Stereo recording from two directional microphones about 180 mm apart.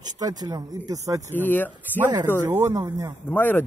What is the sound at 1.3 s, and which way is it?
Speech, 10° left (ahead or behind).